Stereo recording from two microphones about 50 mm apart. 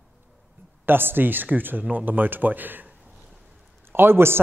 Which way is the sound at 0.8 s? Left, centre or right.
Right.